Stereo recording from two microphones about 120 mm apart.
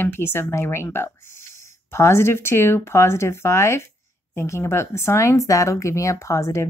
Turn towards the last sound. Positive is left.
turn(degrees=25)  # may be behind; listen again after turning